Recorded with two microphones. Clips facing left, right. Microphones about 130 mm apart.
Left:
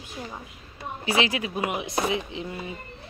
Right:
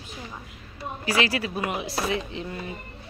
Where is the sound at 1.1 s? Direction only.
20° left (ahead or behind).